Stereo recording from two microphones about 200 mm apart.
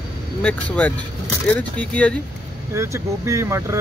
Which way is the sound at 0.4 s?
5° left (ahead or behind).